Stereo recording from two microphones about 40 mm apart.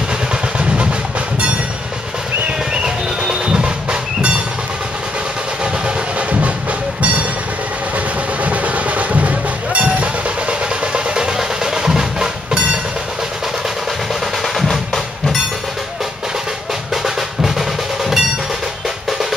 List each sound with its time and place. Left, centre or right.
2.7 s music: centre
8.4 s music: right; by 12.5 s centre
14.4 s percussion: centre
16.9 s drum: centre